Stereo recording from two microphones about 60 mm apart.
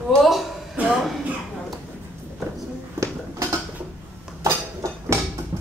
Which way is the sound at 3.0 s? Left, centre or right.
Right.